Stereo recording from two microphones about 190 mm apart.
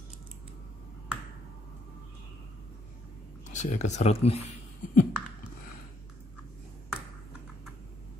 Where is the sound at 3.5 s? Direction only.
40° left (ahead or behind).